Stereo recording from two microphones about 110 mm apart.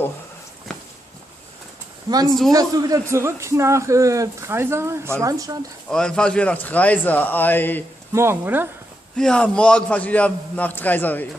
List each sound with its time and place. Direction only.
0.7 s walk: centre (ahead or behind)
2.1 s a woman's voice: 40° right (ahead or behind)
5.9 s a man's voice: 5° left (ahead or behind)
8.1 s a man's voice: 25° right (ahead or behind)
9.1 s a man's voice: 5° left (ahead or behind)